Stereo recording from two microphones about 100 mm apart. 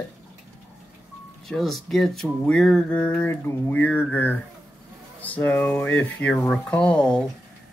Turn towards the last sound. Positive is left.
turn(degrees=10)  # may be behind; listen again after turning